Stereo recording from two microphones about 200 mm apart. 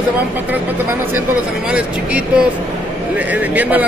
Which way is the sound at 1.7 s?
5° right (ahead or behind).